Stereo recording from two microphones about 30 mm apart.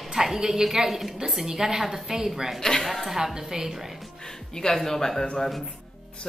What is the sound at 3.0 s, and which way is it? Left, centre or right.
Mantra, centre.